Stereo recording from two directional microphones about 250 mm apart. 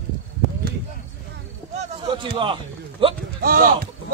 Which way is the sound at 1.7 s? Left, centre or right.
Right.